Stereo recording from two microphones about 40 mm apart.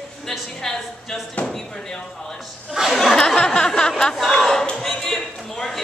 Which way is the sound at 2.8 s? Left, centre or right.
Centre.